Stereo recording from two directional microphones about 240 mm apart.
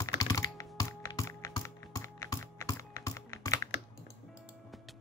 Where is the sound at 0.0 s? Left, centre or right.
Centre.